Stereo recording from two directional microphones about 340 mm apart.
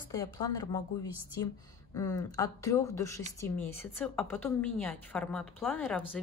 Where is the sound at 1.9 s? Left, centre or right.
Centre.